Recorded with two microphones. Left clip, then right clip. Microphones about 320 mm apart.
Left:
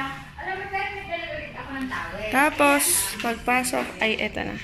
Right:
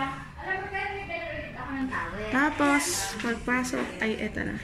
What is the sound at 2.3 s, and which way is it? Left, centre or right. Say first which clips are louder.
A woman's voice: left 6 dB; centre.